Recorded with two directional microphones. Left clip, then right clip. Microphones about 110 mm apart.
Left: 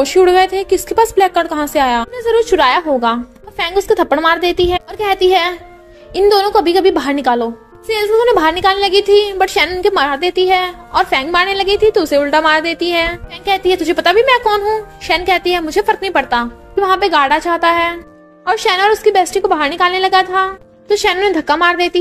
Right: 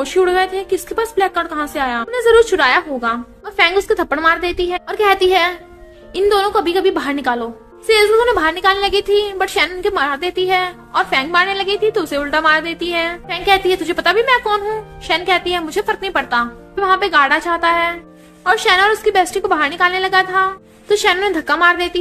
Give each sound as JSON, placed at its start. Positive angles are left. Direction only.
{"t": 0.0, "sound": "a woman's voice", "side_deg": 50}
{"t": 2.1, "sound": "a woman's voice", "side_deg": 35}